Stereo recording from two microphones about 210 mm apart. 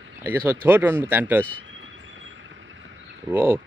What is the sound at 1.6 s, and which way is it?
Vehicle, 65° right (ahead or behind).